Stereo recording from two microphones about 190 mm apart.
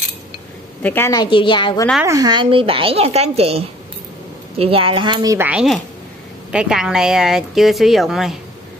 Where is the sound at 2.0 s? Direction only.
15° right (ahead or behind).